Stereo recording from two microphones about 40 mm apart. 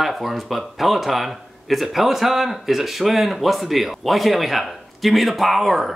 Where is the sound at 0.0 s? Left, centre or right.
Centre.